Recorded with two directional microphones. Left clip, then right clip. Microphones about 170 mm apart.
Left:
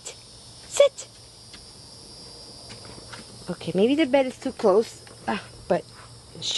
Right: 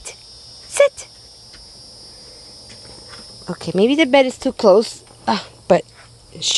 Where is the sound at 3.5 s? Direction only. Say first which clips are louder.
Right 6 dB; 30° right (ahead or behind).